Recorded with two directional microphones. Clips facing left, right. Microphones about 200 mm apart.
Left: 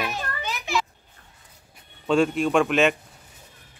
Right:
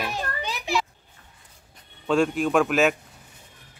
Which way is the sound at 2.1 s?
Centre (ahead or behind).